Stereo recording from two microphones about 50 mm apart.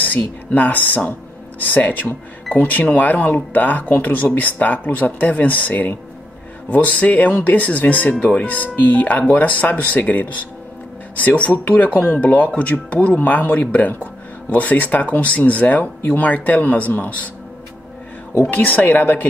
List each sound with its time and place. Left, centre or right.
0.0 s speech: left
18.5 s speech: left